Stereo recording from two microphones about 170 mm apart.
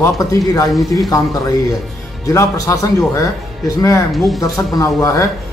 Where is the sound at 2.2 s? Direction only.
20° left (ahead or behind).